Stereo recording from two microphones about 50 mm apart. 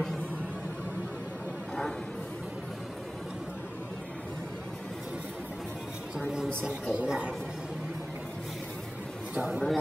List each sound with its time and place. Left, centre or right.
6.6 s speech: right
9.3 s speech: centre